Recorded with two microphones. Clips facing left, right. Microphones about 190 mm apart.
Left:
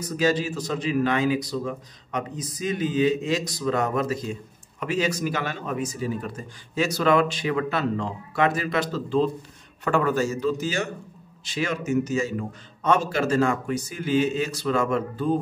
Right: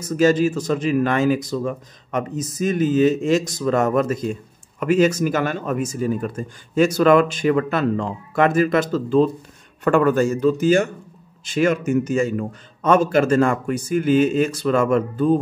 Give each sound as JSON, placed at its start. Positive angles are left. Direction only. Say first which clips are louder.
{"t": 0.0, "sound": "speech", "louder": "right 7 dB", "side_deg": -50}